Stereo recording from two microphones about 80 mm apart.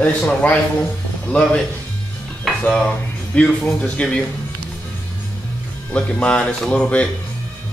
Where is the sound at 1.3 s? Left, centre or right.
Centre.